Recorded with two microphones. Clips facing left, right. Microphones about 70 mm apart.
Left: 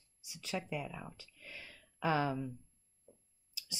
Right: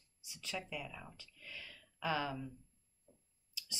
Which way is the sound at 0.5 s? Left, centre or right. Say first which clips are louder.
Left 4 dB; left.